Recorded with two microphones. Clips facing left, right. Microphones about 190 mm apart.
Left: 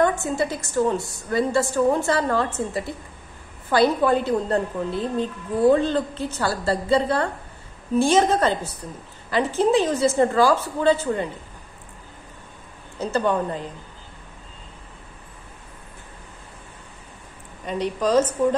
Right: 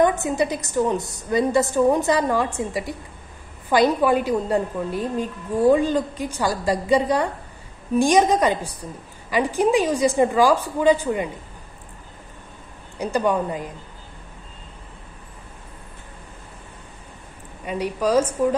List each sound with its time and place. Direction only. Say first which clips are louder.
0.0 s a woman's voice: right 2 dB; 20° right (ahead or behind)
12.9 s a woman's voice: right 1 dB; 15° right (ahead or behind)
17.6 s a woman's voice: even; 10° right (ahead or behind)